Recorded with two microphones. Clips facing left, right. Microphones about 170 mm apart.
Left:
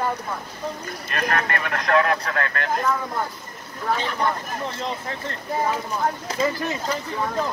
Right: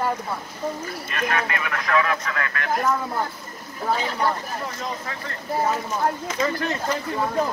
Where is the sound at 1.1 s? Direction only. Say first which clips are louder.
Left 1 dB; 45° left (ahead or behind).